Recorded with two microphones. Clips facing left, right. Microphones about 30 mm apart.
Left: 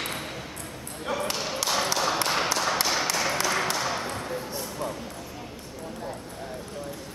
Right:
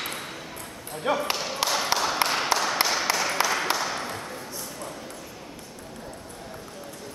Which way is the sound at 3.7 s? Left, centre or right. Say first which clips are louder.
Right 1 dB; centre.